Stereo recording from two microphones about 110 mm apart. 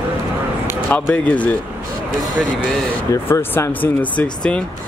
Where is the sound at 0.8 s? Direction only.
15° left (ahead or behind).